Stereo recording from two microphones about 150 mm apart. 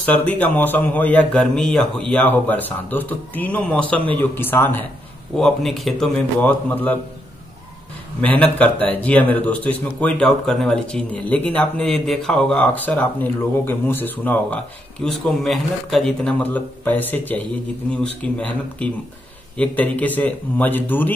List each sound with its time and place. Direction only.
0.0 s a man's voice: 10° left (ahead or behind)
8.2 s a man's voice: 10° left (ahead or behind)